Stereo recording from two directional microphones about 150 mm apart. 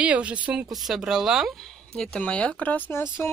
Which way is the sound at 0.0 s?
10° right (ahead or behind).